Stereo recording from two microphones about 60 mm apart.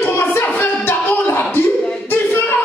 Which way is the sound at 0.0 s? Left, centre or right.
Left.